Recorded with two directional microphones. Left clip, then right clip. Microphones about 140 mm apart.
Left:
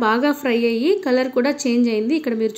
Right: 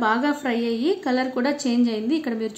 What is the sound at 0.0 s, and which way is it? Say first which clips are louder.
A woman's voice: left 4 dB; 25° left (ahead or behind).